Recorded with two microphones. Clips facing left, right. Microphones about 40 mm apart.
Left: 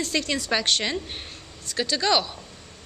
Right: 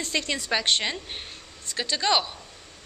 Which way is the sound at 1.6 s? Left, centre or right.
Right.